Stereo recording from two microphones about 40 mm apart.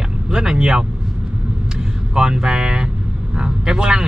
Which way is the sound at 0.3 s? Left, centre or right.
Centre.